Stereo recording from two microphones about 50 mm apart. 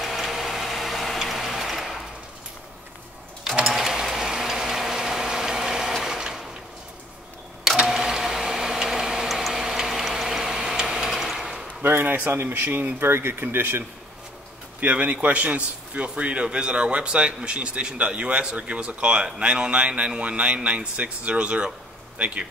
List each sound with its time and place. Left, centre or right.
0.0 s vehicle: centre
3.6 s tick-tock: centre
6.0 s sewing machine: centre
7.7 s printer: centre
9.3 s tick-tock: centre
11.8 s a sound: right
12.3 s speech: right
12.6 s a man's voice: right
13.0 s speech: right
14.8 s a man's voice: right